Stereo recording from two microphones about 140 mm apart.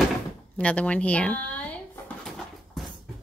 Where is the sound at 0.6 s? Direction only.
10° left (ahead or behind).